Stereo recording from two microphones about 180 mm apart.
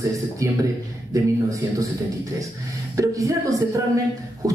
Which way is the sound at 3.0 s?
20° right (ahead or behind).